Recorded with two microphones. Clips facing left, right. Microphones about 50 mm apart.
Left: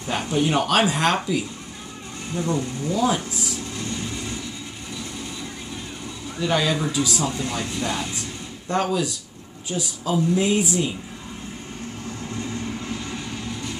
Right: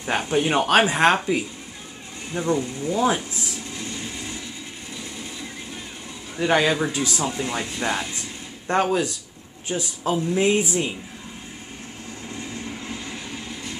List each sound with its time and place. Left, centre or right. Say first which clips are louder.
0.3 s speech: right 1 dB; right
2.3 s speech: right 2 dB; centre
3.7 s a sound: left 3 dB; centre
6.3 s speech: right 3 dB; right
6.9 s speech: left 2 dB; right
7.2 s speech: even; centre
8.7 s speech: right 2 dB; right
12.9 s vehicle: left 3 dB; centre